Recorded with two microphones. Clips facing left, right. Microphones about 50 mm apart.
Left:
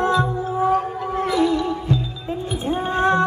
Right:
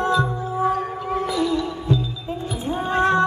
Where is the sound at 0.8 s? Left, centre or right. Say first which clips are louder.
Left 2 dB; left.